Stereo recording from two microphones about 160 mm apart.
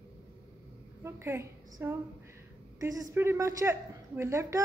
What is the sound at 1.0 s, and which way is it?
A woman's voice, 15° right (ahead or behind).